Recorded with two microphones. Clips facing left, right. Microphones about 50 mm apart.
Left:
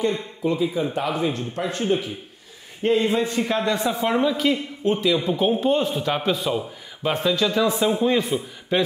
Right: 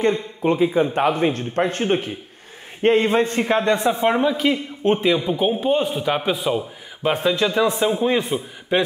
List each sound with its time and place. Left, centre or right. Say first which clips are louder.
0.0 s a man's voice: right 4 dB; right
4.2 s a man's voice: right 2 dB; centre
4.8 s a man's voice: right 3 dB; right
5.1 s a man's voice: right 1 dB; centre